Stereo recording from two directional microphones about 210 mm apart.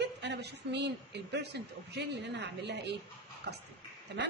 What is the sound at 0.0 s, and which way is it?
A woman's voice, 55° right (ahead or behind).